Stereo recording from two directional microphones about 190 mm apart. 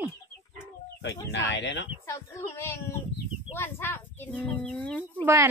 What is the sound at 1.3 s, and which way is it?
Speech, 70° left (ahead or behind).